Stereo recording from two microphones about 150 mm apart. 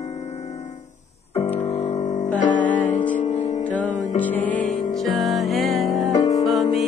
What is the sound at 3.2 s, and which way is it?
Music, 50° left (ahead or behind).